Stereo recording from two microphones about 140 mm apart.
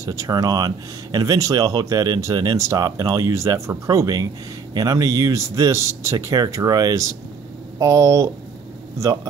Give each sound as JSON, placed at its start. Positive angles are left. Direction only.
{"t": 0.0, "sound": "speech", "side_deg": -25}